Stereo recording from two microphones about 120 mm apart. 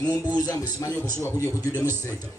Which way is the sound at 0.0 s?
30° left (ahead or behind).